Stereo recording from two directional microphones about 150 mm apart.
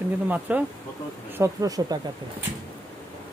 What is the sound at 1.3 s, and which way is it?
Speech, 20° right (ahead or behind).